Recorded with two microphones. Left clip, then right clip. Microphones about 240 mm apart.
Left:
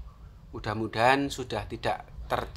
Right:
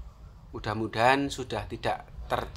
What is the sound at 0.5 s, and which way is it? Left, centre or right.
Speech, centre.